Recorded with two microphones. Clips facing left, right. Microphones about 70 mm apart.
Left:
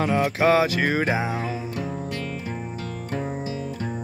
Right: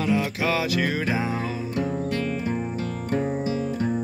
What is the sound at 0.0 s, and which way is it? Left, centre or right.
Music, left.